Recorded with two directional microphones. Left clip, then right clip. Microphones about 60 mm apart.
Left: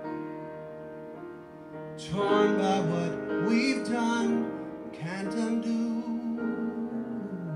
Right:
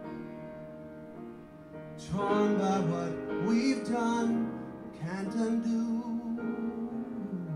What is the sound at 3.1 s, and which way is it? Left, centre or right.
Music, centre.